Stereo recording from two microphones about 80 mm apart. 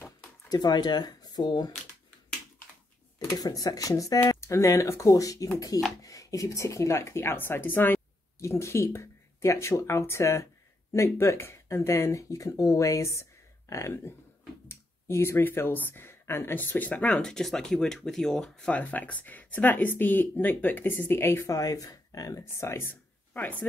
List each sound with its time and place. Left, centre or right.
0.5 s speech: left
3.3 s speech: left
8.5 s speech: left
17.0 s speech: centre
18.7 s speech: centre